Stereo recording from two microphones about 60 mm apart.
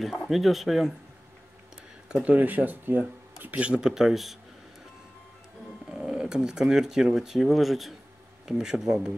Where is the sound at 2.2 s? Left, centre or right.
Right; by 4.3 s centre.